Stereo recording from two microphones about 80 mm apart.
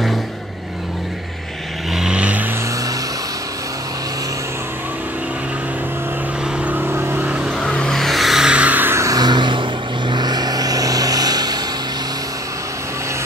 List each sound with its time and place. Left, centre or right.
2.0 s vehicle: centre
6.6 s vehicle: right
7.6 s vehicle: centre
8.5 s vehicle: centre
8.9 s vehicle: right
9.2 s vehicle: right